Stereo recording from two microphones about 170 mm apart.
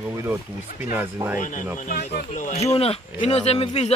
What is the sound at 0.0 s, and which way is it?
Speech, 10° right (ahead or behind).